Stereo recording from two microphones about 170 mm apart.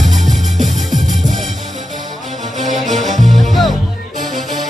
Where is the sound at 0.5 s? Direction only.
50° right (ahead or behind).